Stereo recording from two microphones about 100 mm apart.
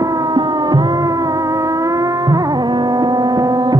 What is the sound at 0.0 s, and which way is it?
Music, 40° right (ahead or behind).